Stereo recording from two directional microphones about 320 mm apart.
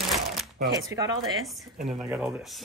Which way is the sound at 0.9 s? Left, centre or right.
Centre.